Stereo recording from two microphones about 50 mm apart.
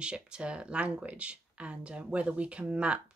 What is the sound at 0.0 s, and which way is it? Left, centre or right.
Speech, right.